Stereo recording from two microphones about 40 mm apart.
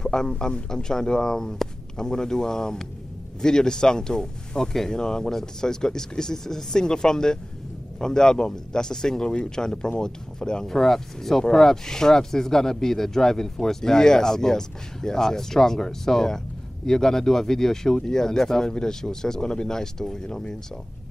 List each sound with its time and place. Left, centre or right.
0.0 s speech: centre